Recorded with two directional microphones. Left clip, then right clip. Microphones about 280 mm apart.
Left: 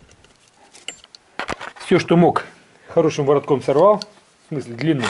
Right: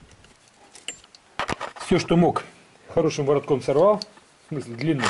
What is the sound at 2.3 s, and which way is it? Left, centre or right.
Speech, centre.